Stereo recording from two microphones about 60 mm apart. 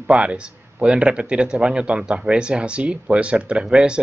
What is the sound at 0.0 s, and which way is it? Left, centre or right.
Speech, centre.